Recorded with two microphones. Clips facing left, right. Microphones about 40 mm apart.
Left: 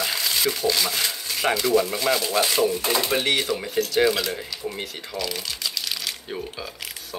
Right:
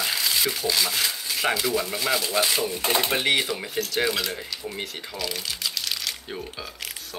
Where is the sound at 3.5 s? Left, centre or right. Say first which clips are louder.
Left 4 dB; centre.